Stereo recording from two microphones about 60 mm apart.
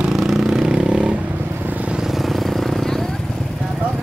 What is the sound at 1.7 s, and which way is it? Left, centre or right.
Vehicle, right.